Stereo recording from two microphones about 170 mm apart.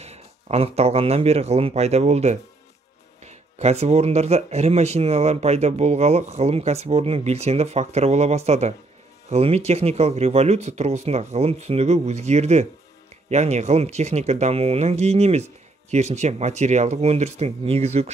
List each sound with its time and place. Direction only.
0.0 s speech: 40° right (ahead or behind)